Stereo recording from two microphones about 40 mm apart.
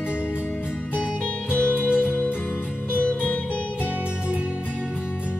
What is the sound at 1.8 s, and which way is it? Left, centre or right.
Music, right.